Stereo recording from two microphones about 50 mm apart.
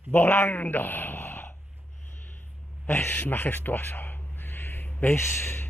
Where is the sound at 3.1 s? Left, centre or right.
Left.